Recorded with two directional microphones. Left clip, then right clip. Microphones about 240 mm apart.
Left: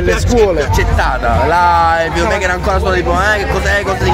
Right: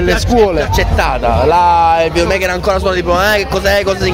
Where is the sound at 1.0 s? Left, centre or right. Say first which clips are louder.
Right 1 dB; right.